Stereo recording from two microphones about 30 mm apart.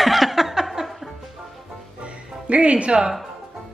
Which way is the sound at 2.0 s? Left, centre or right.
Right.